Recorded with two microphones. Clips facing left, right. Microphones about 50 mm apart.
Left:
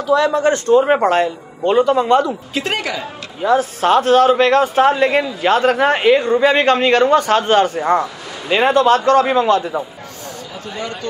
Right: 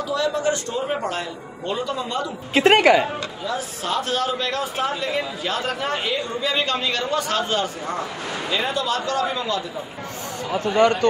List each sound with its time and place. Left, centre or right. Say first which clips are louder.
0.0 s a man's voice: left 8 dB; left
0.8 s a man's voice: left 11 dB; left
2.5 s a woman's voice: right 10 dB; right
3.4 s a man's voice: left 14 dB; left
8.5 s a man's voice: left 12 dB; left
10.5 s speech: right 11 dB; right